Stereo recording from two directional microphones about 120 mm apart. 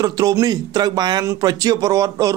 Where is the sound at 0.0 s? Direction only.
30° right (ahead or behind).